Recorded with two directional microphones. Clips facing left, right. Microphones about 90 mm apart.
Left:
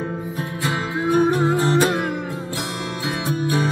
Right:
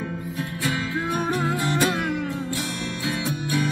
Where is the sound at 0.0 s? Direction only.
35° left (ahead or behind).